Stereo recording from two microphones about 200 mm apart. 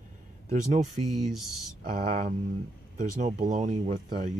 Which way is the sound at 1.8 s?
40° right (ahead or behind).